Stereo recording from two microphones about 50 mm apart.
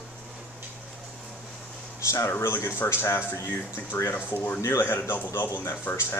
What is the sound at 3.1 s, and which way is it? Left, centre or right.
Speech, left.